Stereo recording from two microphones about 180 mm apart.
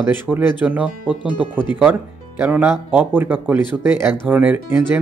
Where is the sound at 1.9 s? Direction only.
10° right (ahead or behind).